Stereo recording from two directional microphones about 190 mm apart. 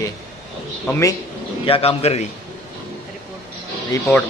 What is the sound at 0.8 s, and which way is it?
Speech, 10° left (ahead or behind).